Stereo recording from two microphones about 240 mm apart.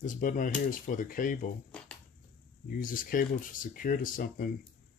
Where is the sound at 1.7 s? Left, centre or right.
Centre.